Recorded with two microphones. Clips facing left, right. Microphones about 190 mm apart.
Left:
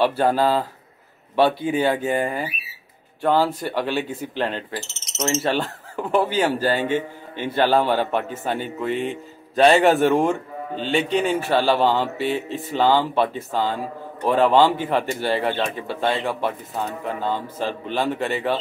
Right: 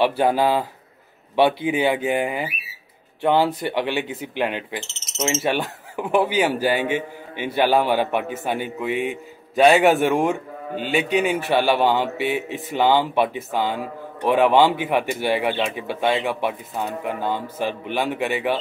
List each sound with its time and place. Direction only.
0.0 s speech: 15° right (ahead or behind)